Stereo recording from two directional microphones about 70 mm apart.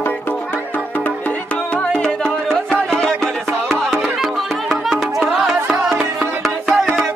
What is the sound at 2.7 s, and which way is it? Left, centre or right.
Music, centre.